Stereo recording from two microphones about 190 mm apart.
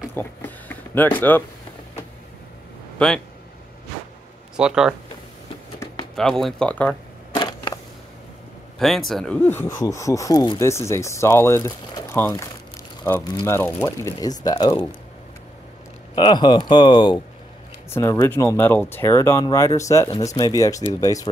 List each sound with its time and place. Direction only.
0.1 s a sound: 10° left (ahead or behind)
4.6 s speech: 5° right (ahead or behind)
6.1 s speech: centre (ahead or behind)
7.3 s a sound: 25° left (ahead or behind)
8.7 s speech: centre (ahead or behind); by 15.0 s 25° left (ahead or behind)
16.2 s speech: 25° left (ahead or behind)
17.8 s speech: 15° left (ahead or behind)